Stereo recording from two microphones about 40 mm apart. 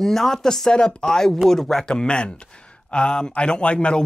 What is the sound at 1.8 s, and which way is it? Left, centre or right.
Speech, left.